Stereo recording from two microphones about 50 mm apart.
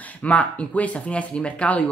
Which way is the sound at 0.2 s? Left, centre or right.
Left.